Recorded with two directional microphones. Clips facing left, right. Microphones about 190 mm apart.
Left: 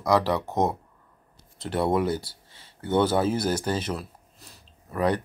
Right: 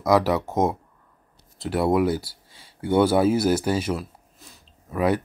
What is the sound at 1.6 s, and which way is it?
Speech, 5° right (ahead or behind).